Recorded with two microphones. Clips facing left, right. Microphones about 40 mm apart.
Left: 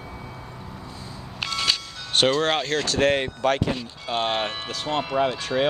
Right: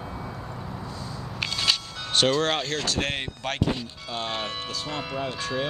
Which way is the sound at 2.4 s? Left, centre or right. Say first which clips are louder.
Left 2 dB; centre.